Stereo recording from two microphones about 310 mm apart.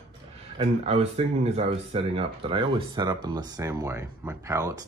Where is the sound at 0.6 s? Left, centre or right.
Centre.